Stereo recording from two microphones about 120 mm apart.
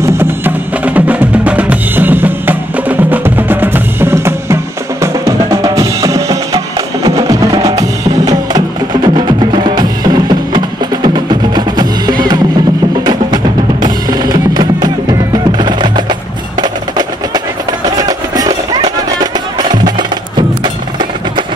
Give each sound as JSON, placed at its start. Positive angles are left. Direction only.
{"t": 0.0, "sound": "music", "side_deg": -20}
{"t": 5.0, "sound": "percussion", "side_deg": -25}
{"t": 7.7, "sound": "music", "side_deg": -30}
{"t": 17.8, "sound": "music", "side_deg": -35}